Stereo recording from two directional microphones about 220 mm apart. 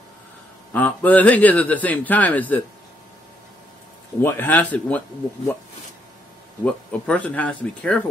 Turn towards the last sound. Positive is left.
turn(degrees=5)  # may be behind; listen again after turning